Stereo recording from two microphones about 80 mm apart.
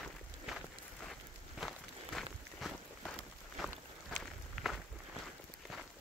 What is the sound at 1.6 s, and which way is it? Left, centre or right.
Walk, centre.